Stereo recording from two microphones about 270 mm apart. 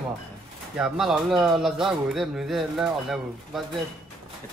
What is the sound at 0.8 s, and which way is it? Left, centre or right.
Speech, centre.